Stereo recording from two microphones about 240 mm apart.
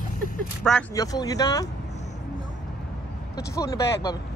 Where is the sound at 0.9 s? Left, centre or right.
Centre.